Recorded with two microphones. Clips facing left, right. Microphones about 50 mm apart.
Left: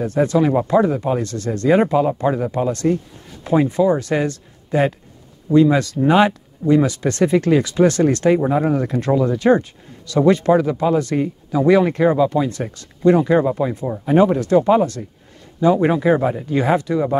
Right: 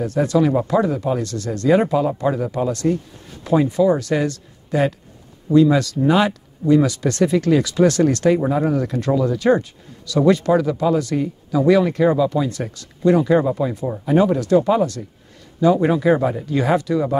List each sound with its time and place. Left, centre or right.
0.0 s speech: left